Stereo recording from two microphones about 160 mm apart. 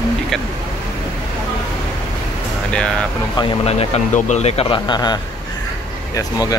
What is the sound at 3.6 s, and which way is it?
Speech, 40° left (ahead or behind).